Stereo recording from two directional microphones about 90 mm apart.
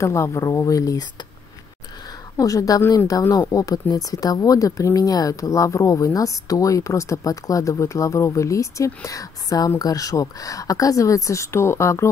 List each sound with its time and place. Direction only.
0.0 s speech: 35° left (ahead or behind)
2.3 s speech: 40° left (ahead or behind)